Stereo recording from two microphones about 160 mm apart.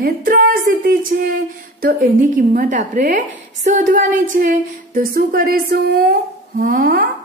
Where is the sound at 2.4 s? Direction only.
50° right (ahead or behind).